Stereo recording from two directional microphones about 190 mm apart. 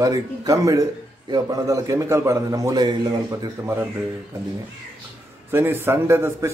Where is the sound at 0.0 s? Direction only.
20° right (ahead or behind).